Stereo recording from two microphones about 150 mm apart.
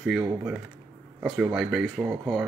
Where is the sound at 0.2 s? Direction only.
20° right (ahead or behind).